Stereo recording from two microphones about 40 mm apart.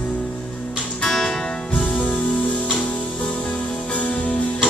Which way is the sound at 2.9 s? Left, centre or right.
Left.